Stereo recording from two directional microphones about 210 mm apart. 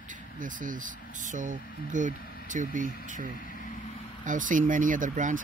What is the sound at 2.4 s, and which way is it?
Speech, 35° right (ahead or behind).